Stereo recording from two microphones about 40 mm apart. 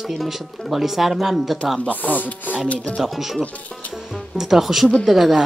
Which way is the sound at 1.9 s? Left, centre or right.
Left.